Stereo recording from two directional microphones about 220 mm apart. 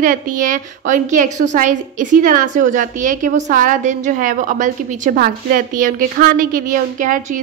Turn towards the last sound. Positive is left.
turn(degrees=-35)  # may be behind; listen again after turning